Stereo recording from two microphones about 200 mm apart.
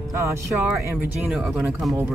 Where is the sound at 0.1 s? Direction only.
15° right (ahead or behind).